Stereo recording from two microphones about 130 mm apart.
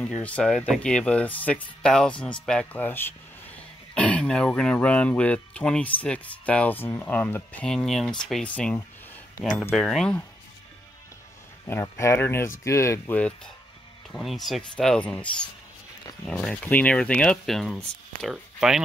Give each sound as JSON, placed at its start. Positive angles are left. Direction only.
{"t": 0.0, "sound": "speech", "side_deg": 10}
{"t": 7.6, "sound": "speech", "side_deg": 5}
{"t": 9.7, "sound": "speech", "side_deg": 0}
{"t": 11.6, "sound": "speech", "side_deg": 20}
{"t": 14.1, "sound": "speech", "side_deg": 0}